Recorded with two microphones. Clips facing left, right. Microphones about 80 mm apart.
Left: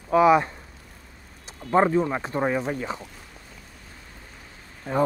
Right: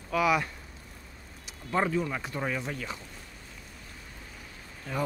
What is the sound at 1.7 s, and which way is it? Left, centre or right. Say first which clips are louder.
Speech: left 8 dB; left.